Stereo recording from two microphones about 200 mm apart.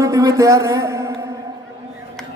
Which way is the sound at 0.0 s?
15° right (ahead or behind).